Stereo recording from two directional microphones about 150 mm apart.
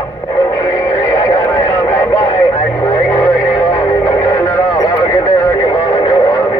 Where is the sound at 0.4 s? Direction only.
20° left (ahead or behind).